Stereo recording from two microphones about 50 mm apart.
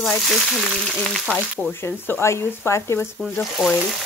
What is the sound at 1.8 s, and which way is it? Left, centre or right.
Speech, left.